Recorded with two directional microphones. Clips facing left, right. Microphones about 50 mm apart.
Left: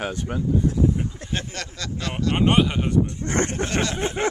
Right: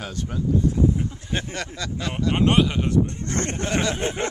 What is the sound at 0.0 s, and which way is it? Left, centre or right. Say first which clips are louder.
Speech: left 4 dB; left.